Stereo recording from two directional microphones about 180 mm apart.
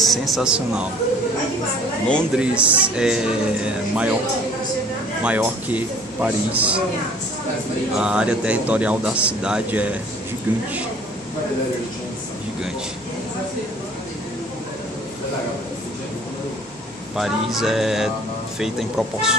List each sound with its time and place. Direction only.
0.1 s speech: centre (ahead or behind)
2.0 s speech: 5° left (ahead or behind)
2.4 s a man's voice: 5° right (ahead or behind)
5.2 s a man's voice: 5° right (ahead or behind)
8.0 s a man's voice: 5° right (ahead or behind)
17.1 s speech: centre (ahead or behind)